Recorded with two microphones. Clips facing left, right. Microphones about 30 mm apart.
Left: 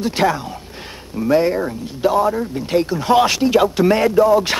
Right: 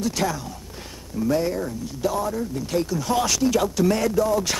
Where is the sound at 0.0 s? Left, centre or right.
Left.